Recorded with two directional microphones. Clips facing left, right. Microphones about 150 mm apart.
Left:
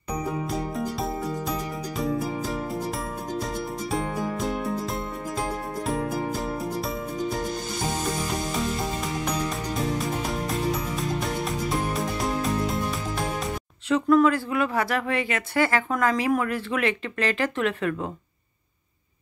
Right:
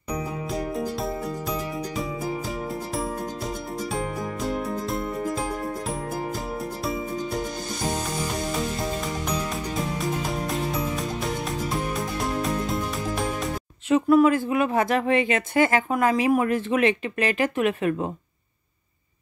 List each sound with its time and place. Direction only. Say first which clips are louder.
3.9 s music: left 3 dB; centre (ahead or behind)
6.8 s music: right 1 dB; centre (ahead or behind)
9.9 s music: even; centre (ahead or behind)
13.8 s speech: right 2 dB; 15° right (ahead or behind)